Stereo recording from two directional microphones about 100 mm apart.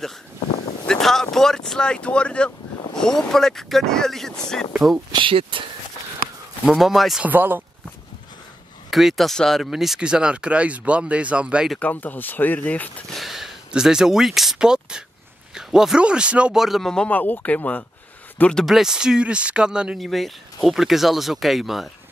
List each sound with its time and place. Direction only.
0.8 s a man's voice: 5° left (ahead or behind)
5.1 s speech: 60° right (ahead or behind)
6.7 s a man's voice: centre (ahead or behind)
7.2 s speech: 20° right (ahead or behind)
8.9 s speech: centre (ahead or behind)
11.8 s speech: 15° left (ahead or behind)
13.1 s a man's voice: centre (ahead or behind)